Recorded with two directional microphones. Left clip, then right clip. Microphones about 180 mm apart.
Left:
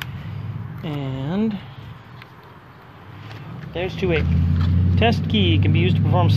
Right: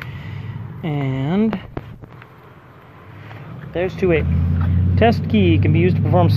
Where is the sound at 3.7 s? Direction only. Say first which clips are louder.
Right 5 dB; 35° right (ahead or behind).